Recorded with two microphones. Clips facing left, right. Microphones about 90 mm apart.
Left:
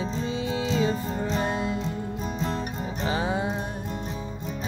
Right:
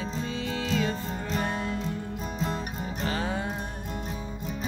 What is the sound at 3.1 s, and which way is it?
Music, 15° left (ahead or behind).